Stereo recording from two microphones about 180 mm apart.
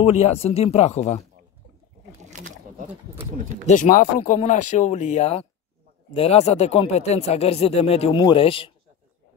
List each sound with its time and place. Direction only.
0.0 s speech: 35° left (ahead or behind)
2.3 s a sound: 45° right (ahead or behind)
3.6 s speech: 45° left (ahead or behind)